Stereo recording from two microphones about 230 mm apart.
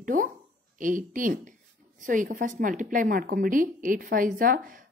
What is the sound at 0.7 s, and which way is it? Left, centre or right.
A woman's voice, right.